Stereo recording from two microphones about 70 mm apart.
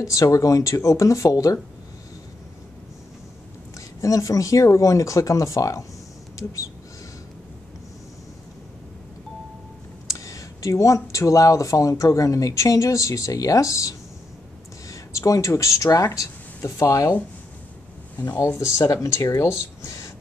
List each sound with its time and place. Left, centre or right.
0.0 s speech: left
4.0 s speech: left
10.0 s speech: left
18.7 s speech: left
19.8 s a sound: left